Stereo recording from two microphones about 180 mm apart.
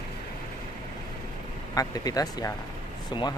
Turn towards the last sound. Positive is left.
turn(degrees=25)  # may be behind; listen again after turning